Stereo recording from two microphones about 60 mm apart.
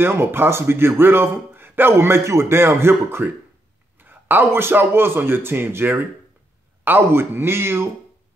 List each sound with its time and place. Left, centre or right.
0.0 s a man's voice: right